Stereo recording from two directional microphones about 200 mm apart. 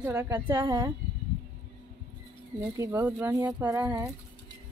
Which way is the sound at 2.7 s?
10° right (ahead or behind).